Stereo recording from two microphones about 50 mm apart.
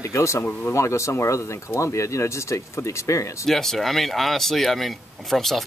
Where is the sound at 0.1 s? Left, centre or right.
Left.